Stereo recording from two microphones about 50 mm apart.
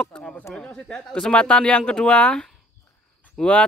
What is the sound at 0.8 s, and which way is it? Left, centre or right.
Speech, centre.